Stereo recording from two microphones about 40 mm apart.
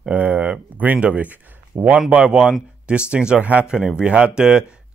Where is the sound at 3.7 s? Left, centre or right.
Right.